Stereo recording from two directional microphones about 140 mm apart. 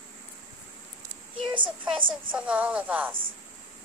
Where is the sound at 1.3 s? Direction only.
35° right (ahead or behind).